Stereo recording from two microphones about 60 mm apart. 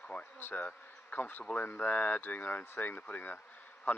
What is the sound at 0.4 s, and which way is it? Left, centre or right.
Speech, left.